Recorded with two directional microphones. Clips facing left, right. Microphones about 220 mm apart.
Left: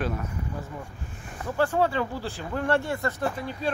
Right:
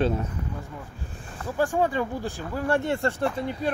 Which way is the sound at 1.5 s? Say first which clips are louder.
Even; 15° right (ahead or behind).